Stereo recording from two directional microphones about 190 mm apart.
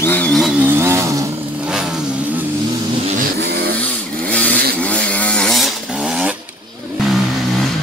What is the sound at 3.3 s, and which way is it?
Vehicle, 60° right (ahead or behind).